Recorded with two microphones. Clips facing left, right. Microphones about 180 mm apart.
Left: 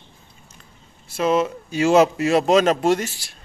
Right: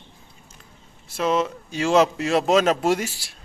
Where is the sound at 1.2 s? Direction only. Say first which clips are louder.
Left 3 dB; 5° left (ahead or behind).